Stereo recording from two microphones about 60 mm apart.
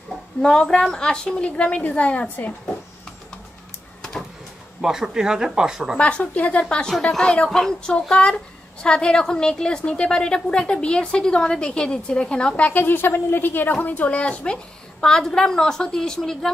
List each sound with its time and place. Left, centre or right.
0.4 s a woman's voice: centre
4.8 s speech: centre
5.9 s a woman's voice: left